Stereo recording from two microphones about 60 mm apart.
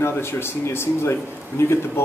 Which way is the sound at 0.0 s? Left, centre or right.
Left.